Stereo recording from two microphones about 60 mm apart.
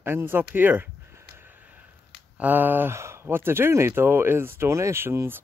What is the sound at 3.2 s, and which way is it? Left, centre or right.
Speech, right.